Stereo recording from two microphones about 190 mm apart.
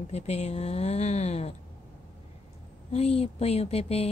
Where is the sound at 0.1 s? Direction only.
35° left (ahead or behind).